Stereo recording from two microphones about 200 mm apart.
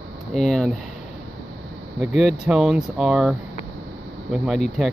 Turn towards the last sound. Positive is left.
turn(degrees=0)  # may be behind; listen again after turning